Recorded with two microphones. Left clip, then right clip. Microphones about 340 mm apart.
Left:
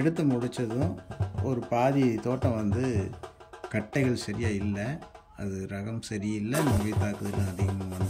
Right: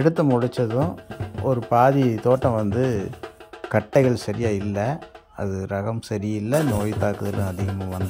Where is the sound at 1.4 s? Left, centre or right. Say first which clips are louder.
Right 10 dB; right.